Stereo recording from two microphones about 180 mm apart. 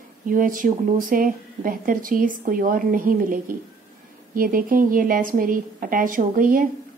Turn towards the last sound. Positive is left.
turn(degrees=-50)  # may be behind; listen again after turning